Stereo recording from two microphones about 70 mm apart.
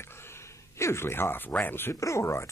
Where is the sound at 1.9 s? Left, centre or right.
Left.